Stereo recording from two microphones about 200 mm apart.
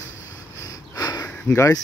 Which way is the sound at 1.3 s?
10° left (ahead or behind).